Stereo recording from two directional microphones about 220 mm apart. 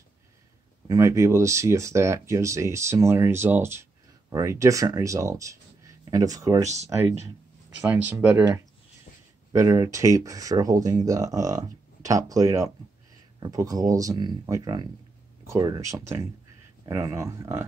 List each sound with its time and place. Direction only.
0.8 s speech: 15° right (ahead or behind)